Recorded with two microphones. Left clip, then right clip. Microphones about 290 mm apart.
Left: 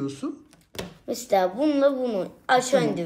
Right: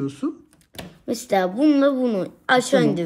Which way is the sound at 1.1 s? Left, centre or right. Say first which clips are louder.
Right 1 dB; right.